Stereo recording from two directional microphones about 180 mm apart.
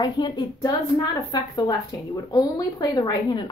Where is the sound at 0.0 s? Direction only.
25° left (ahead or behind).